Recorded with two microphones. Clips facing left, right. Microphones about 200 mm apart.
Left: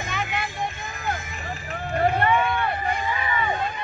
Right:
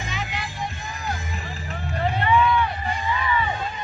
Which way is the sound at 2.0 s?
50° left (ahead or behind).